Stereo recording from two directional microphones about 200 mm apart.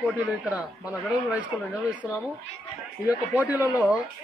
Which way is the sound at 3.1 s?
10° right (ahead or behind).